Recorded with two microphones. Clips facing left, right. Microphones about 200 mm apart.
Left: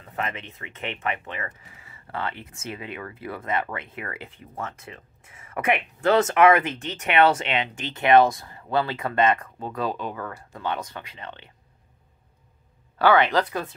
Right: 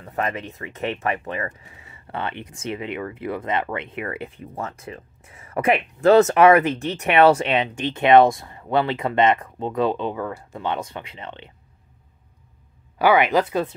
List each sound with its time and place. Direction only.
0.0 s speech: 35° right (ahead or behind)
13.0 s speech: 15° right (ahead or behind)